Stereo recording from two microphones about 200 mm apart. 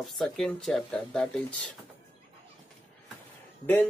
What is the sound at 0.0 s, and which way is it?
Speech, centre (ahead or behind).